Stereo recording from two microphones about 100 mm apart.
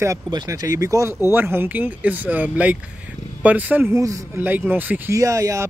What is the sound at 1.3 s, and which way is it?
Speech, 20° right (ahead or behind).